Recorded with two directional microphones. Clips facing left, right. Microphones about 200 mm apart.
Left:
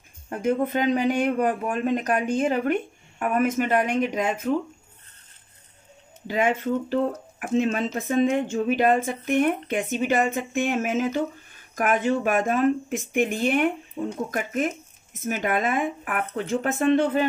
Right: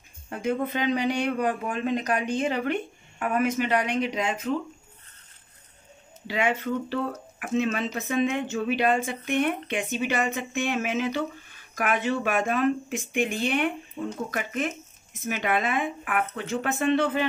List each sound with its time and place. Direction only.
0.3 s speech: 45° left (ahead or behind)
6.2 s speech: 45° left (ahead or behind)